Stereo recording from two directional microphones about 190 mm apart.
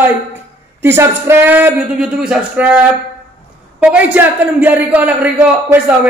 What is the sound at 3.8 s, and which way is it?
A man's voice, 10° right (ahead or behind).